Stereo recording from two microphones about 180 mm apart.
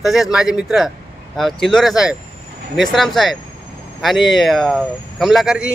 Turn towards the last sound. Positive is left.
turn(degrees=-5)  # may be behind; listen again after turning